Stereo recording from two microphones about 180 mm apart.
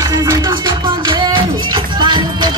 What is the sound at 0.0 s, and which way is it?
Music, 20° right (ahead or behind).